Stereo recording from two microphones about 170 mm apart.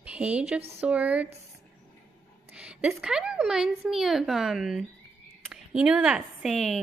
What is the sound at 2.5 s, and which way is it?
Speech, 5° right (ahead or behind).